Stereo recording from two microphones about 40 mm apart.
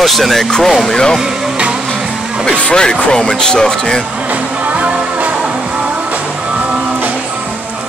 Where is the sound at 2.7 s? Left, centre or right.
Centre.